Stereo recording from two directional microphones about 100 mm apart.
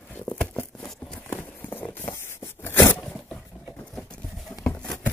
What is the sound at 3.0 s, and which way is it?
Zipper, 5° left (ahead or behind).